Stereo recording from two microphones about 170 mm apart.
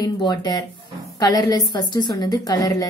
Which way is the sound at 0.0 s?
25° left (ahead or behind).